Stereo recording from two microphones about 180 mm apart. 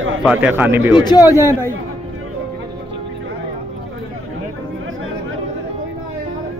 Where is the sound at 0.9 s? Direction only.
25° left (ahead or behind).